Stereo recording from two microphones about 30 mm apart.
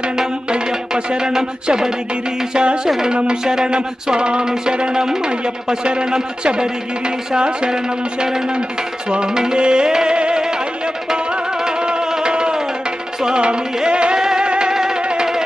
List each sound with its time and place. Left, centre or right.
0.7 s speech: right
2.5 s music: right
5.9 s speech: right
7.3 s music: right
11.6 s music: right
14.1 s music: right
15.0 s music: right